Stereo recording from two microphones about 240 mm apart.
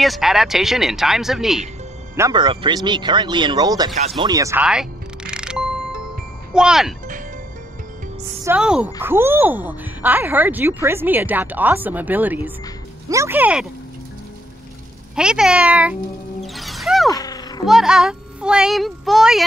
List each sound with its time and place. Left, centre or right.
0.0 s a child's voice: centre
2.1 s a child's voice: centre
8.5 s a child's voice: centre
15.1 s a child's voice: centre
16.5 s music: centre
17.1 s music: centre
17.6 s a child's voice: centre